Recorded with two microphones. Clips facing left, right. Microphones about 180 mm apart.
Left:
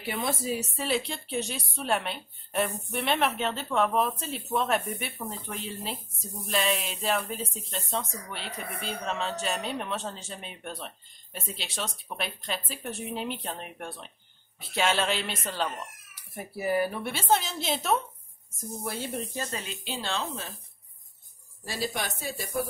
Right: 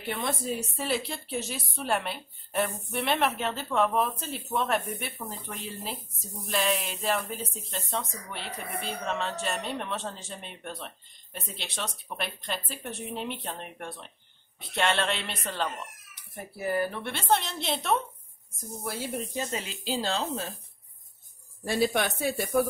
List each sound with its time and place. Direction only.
0.0 s speech: 5° left (ahead or behind)
19.3 s speech: 20° right (ahead or behind); by 20.5 s 40° right (ahead or behind)
21.6 s speech: 60° right (ahead or behind)